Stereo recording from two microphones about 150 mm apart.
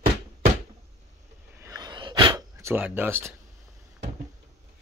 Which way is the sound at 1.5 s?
20° right (ahead or behind).